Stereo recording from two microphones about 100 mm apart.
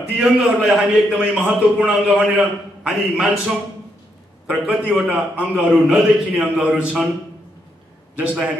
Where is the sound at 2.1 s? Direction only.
5° right (ahead or behind).